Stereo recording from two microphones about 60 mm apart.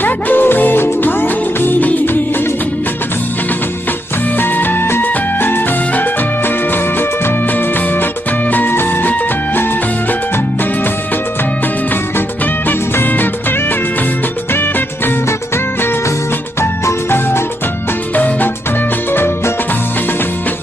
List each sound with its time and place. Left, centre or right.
0.0 s music: left
4.4 s music: left
12.6 s music: left
18.1 s music: left
19.1 s music: left